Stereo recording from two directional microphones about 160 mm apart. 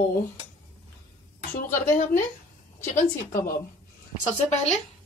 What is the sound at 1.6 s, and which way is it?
A woman's voice, 55° left (ahead or behind).